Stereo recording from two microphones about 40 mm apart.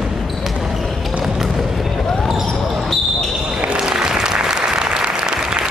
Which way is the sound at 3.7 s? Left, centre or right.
Centre.